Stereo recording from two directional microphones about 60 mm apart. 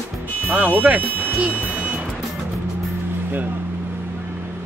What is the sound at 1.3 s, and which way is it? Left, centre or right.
Buzzer, centre.